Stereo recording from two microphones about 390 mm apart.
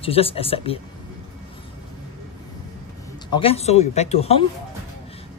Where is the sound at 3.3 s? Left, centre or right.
Centre.